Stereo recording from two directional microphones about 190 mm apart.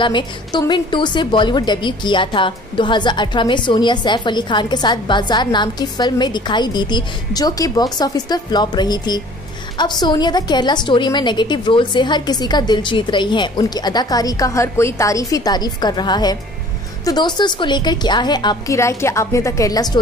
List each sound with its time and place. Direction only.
0.0 s a woman's voice: 25° left (ahead or behind)